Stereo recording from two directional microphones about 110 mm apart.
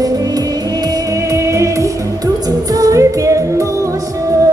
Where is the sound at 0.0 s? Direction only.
35° right (ahead or behind).